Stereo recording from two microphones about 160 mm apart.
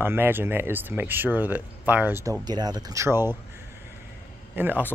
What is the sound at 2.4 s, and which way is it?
Speech, 25° right (ahead or behind).